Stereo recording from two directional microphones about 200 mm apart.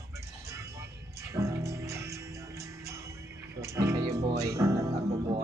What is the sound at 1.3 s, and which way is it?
Music, 15° right (ahead or behind).